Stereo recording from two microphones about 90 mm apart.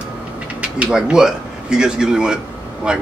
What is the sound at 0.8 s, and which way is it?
Speech, 10° right (ahead or behind).